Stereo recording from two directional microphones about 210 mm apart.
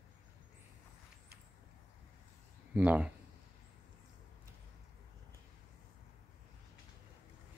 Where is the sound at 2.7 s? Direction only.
5° right (ahead or behind).